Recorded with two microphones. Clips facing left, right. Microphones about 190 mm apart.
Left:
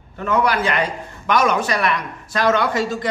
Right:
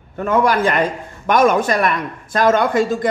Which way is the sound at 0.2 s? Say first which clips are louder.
Right 3 dB; 50° right (ahead or behind).